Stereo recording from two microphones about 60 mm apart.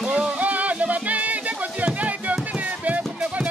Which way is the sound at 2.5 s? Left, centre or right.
Right.